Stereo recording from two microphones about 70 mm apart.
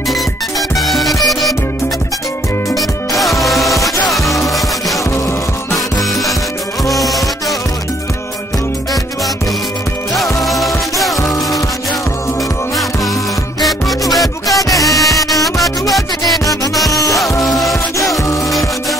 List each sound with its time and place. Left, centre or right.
0.1 s music: centre
3.2 s music: centre
10.1 s music: centre
13.6 s music: centre
14.6 s music: left
14.9 s music: centre